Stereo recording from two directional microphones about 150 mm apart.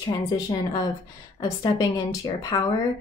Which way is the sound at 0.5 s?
25° left (ahead or behind).